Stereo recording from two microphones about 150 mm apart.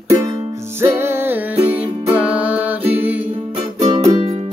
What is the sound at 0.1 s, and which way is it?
Music, 20° right (ahead or behind).